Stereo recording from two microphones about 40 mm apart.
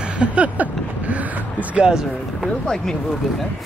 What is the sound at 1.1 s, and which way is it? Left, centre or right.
Vehicle, right.